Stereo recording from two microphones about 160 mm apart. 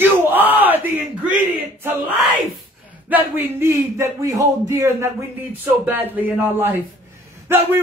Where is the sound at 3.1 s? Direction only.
15° right (ahead or behind).